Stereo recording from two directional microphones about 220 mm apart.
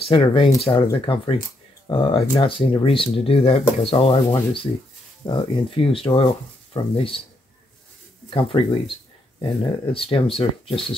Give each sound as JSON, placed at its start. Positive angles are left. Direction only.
{"t": 0.0, "sound": "speech", "side_deg": 25}
{"t": 8.3, "sound": "speech", "side_deg": 25}
{"t": 9.9, "sound": "speech", "side_deg": 25}